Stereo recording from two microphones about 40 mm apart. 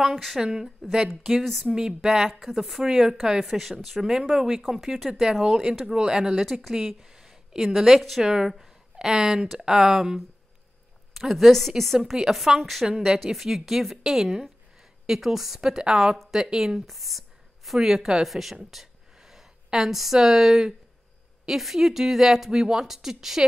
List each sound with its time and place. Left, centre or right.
0.0 s speech: centre
0.4 s speech: centre
1.4 s speech: centre
1.7 s speech: centre
4.0 s speech: centre
6.4 s a woman's voice: centre
8.2 s speech: centre
12.0 s speech: centre
16.8 s speech: centre